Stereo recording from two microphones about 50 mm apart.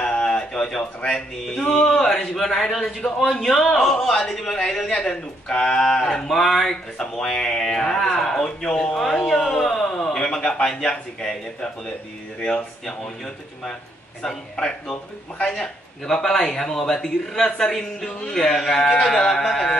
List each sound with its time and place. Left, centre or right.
0.0 s a sound: centre
1.9 s a man's voice: centre
6.2 s a man's voice: centre
8.9 s a man's voice: centre